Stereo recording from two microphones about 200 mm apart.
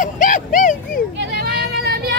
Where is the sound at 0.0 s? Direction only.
40° left (ahead or behind).